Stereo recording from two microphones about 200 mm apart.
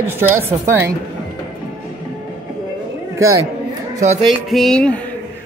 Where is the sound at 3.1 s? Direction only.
15° right (ahead or behind).